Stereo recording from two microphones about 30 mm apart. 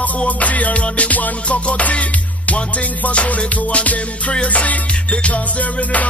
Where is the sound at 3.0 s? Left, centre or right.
Left.